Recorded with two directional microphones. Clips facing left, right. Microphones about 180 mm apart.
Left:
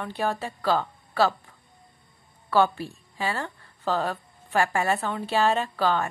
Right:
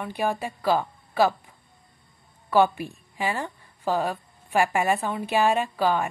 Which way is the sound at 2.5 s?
15° right (ahead or behind).